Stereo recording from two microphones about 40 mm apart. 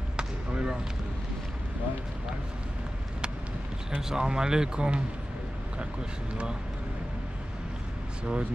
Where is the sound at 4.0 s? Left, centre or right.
Centre.